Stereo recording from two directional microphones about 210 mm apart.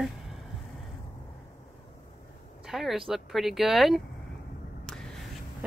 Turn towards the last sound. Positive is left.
turn(degrees=0)  # may be behind; listen again after turning